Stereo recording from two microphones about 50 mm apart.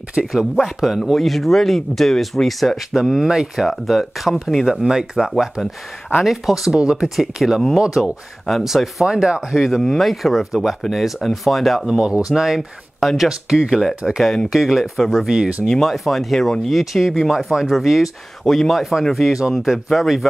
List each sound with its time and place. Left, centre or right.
0.3 s speech: centre
4.8 s speech: centre
5.3 s speech: centre
6.8 s speech: centre
9.0 s speech: centre
9.6 s speech: centre
15.6 s speech: centre